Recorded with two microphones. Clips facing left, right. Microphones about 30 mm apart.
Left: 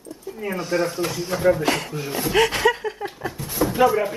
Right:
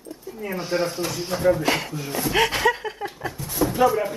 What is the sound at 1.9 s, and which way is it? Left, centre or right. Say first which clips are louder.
Speech: left 1 dB; centre.